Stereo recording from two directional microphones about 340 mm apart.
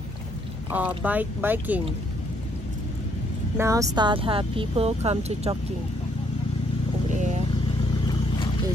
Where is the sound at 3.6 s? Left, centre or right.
Centre.